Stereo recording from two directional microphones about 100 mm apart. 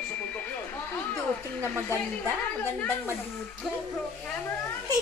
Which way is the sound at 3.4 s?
5° left (ahead or behind).